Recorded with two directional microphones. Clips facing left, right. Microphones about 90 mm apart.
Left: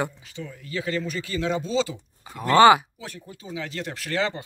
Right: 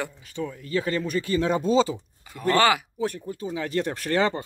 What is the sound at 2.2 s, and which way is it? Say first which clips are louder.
Speech: left 6 dB; 20° left (ahead or behind).